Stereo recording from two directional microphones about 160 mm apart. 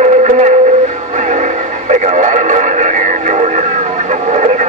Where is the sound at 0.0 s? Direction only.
50° right (ahead or behind).